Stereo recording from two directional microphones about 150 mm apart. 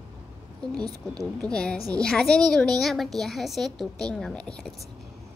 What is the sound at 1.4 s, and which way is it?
A woman's voice, 5° left (ahead or behind).